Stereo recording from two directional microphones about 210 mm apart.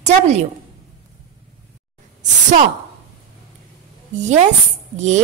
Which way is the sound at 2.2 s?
35° right (ahead or behind).